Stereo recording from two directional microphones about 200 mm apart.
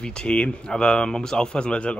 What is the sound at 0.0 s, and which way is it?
Speech, 5° left (ahead or behind).